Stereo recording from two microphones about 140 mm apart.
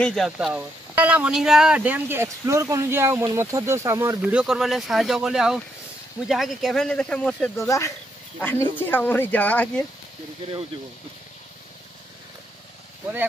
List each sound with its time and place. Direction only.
0.0 s speech: centre (ahead or behind); by 4.2 s 20° right (ahead or behind)
4.2 s speech: 10° right (ahead or behind)
7.5 s speech: 20° left (ahead or behind)